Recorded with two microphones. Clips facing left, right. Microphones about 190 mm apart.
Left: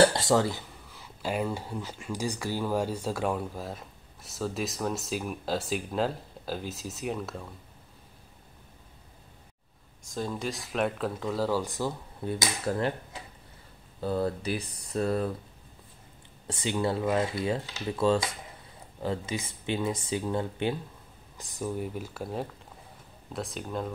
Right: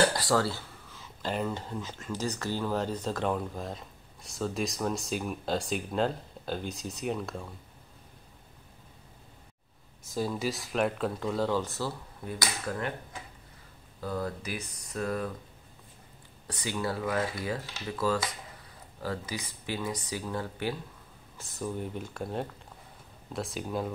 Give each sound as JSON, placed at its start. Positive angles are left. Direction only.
{"t": 0.1, "sound": "speech", "side_deg": 20}
{"t": 10.0, "sound": "speech", "side_deg": -5}
{"t": 12.3, "sound": "a sound", "side_deg": 30}
{"t": 14.0, "sound": "speech", "side_deg": 30}
{"t": 16.4, "sound": "speech", "side_deg": 25}